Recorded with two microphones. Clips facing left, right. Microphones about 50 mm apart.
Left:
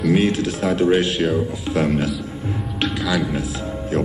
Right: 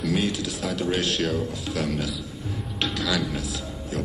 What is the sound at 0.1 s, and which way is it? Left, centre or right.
Speech, left.